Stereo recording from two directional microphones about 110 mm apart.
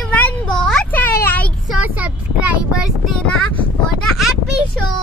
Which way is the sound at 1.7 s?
15° right (ahead or behind).